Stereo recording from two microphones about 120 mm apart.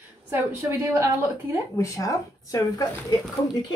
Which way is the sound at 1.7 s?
25° left (ahead or behind).